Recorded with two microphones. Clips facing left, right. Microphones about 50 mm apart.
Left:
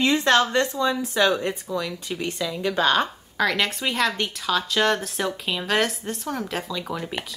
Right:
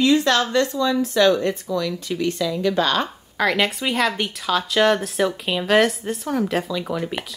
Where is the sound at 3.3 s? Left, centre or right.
Centre.